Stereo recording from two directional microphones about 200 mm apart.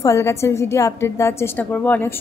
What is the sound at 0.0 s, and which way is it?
A woman's voice, 15° left (ahead or behind).